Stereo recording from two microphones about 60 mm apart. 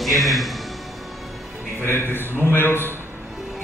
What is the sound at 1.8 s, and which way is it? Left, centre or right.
A man's voice, left.